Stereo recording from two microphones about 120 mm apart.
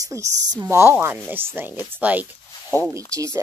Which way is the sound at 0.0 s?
25° right (ahead or behind).